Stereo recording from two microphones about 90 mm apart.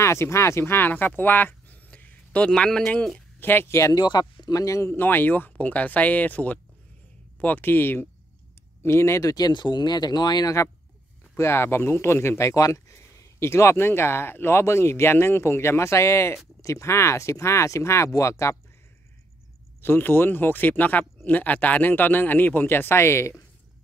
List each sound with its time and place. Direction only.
0.0 s speech: 30° left (ahead or behind); by 3.2 s 5° left (ahead or behind)
3.3 s speech: 25° left (ahead or behind)
3.9 s speech: 55° left (ahead or behind)
11.3 s speech: 30° left (ahead or behind)
19.8 s speech: 25° left (ahead or behind)